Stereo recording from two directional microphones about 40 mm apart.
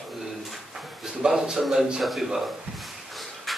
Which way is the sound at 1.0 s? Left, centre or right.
Centre.